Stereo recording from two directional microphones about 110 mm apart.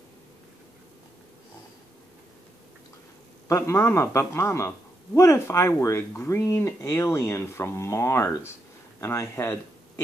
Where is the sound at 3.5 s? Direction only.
25° left (ahead or behind).